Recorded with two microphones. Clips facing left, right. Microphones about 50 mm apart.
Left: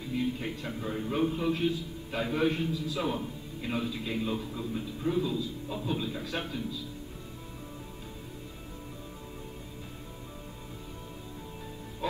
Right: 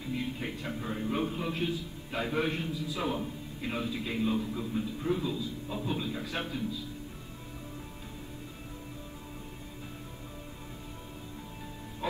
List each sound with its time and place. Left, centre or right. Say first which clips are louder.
0.1 s a man's voice: left 3 dB; centre
12.0 s music: left 1 dB; centre